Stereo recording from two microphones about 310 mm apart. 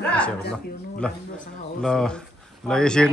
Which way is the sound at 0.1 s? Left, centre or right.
Centre.